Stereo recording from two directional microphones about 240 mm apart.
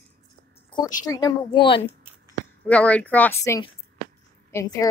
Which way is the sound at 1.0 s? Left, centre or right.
Centre.